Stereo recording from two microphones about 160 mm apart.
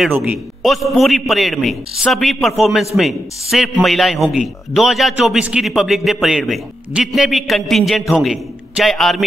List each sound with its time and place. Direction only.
0.0 s a man's voice: 10° right (ahead or behind)